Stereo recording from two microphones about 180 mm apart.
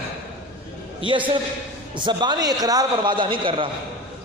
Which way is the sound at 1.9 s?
25° right (ahead or behind).